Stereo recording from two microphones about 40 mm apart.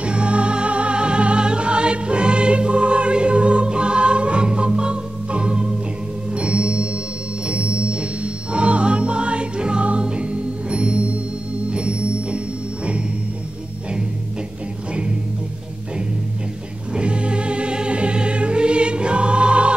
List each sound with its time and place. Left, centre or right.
0.0 s music: right
16.9 s music: right